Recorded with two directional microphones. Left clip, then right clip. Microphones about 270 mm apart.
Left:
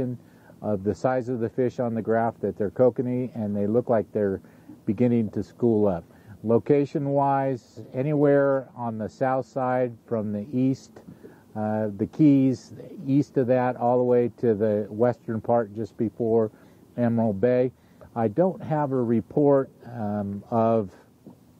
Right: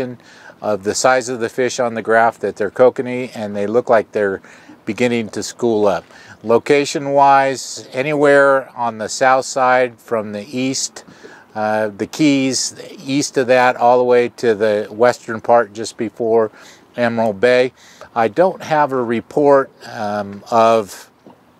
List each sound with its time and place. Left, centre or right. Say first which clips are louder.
0.6 s speech: right 9 dB; centre
5.6 s speech: right 7 dB; right
5.9 s speech: right 10 dB; centre